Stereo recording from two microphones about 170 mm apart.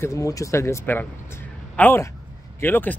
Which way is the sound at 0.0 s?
20° left (ahead or behind).